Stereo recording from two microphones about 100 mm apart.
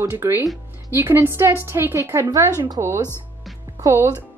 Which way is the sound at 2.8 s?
45° right (ahead or behind).